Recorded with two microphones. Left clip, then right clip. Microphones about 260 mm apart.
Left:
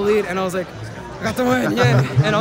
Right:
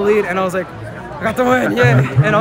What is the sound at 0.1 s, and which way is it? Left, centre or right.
A man's voice, centre.